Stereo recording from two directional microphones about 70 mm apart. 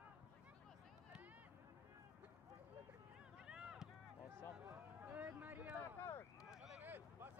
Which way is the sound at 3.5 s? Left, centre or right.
Centre.